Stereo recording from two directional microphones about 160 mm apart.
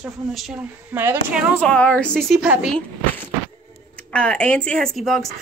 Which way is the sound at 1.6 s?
10° left (ahead or behind).